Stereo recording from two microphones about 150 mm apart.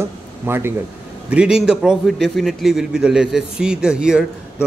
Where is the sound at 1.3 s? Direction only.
5° right (ahead or behind).